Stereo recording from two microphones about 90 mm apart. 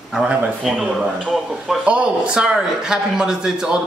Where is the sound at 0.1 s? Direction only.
5° right (ahead or behind).